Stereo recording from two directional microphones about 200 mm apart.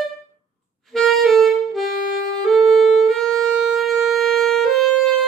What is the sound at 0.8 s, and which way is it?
Music, centre (ahead or behind).